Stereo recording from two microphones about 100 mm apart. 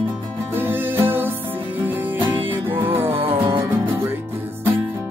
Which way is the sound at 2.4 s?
60° right (ahead or behind).